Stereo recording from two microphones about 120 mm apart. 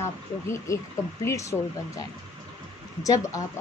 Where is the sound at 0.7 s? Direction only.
25° left (ahead or behind).